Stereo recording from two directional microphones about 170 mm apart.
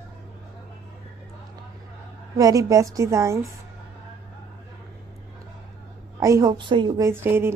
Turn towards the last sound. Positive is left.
turn(degrees=-15)  # may be behind; listen again after turning